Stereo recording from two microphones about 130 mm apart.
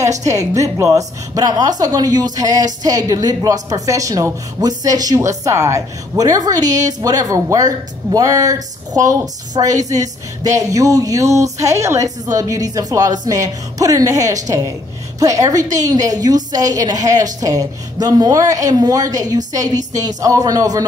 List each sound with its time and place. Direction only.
0.1 s a woman's voice: 25° right (ahead or behind)
6.6 s a woman's voice: 70° right (ahead or behind)
6.9 s a woman's voice: 30° right (ahead or behind)